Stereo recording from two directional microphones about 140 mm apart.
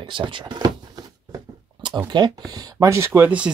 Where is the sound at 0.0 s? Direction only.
35° right (ahead or behind).